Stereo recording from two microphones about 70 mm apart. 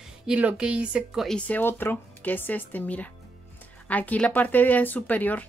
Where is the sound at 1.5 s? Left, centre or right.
Left.